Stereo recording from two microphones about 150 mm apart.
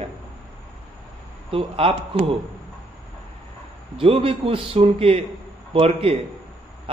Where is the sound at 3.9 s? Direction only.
40° right (ahead or behind).